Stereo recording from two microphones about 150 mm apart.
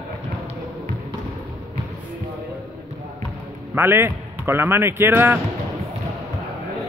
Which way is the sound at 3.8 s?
15° right (ahead or behind).